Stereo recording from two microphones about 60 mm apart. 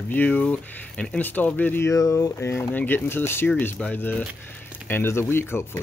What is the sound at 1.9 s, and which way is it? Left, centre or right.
Speech, left.